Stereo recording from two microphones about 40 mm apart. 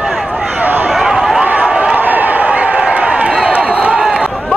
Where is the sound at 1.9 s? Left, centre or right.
Right.